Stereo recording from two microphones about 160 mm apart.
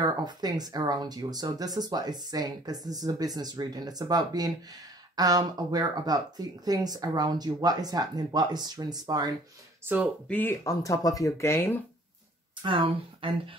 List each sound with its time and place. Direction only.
0.0 s speech: 25° right (ahead or behind)
9.8 s speech: 10° right (ahead or behind)
10.2 s speech: 10° left (ahead or behind)
12.6 s speech: 30° right (ahead or behind)